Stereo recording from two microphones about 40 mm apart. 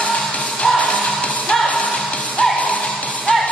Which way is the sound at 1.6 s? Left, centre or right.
Centre.